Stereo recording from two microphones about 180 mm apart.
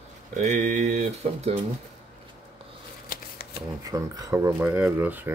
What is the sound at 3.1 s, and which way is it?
Shuffling cards, 60° left (ahead or behind).